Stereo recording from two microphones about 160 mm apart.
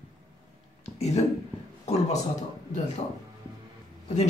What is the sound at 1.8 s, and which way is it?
Speech, 45° left (ahead or behind).